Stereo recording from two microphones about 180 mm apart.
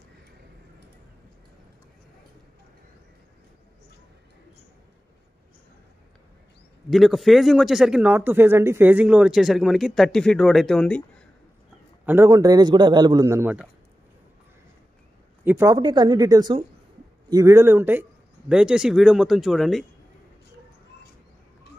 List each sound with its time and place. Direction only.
6.9 s speech: centre (ahead or behind)
12.1 s a man's voice: 15° right (ahead or behind)
15.4 s a man's voice: 15° right (ahead or behind)